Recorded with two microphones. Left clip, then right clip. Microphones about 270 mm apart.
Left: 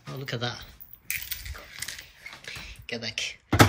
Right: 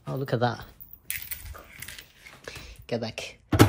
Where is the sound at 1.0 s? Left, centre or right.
Right.